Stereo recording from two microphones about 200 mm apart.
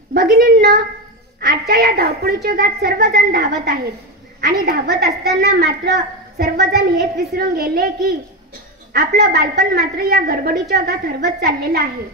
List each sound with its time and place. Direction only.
0.1 s a woman's voice: 50° right (ahead or behind)